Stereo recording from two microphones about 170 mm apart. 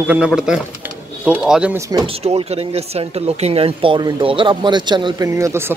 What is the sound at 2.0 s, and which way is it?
Speech, 35° right (ahead or behind).